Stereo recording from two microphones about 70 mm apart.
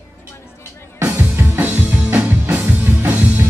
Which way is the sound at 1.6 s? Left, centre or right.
Right.